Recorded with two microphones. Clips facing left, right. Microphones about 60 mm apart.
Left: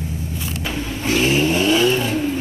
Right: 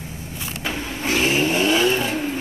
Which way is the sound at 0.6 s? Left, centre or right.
Right.